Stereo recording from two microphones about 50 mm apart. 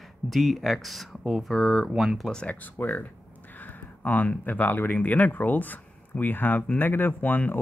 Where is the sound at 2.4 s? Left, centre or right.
Left.